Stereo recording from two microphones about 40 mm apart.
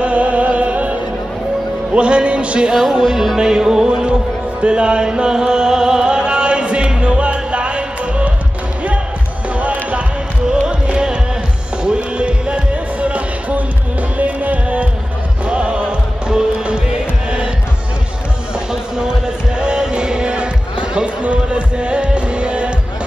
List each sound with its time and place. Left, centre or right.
0.0 s music: right
2.0 s speech: right
2.7 s music: centre
9.6 s basketball bounce: right
10.5 s music: right
18.7 s music: centre